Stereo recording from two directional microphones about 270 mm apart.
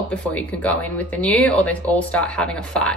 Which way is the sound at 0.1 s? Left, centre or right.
Centre.